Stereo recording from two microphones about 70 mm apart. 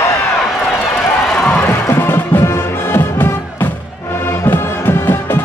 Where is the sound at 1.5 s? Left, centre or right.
Left.